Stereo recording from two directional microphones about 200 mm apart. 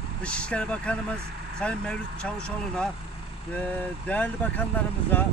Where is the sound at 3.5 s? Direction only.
5° left (ahead or behind).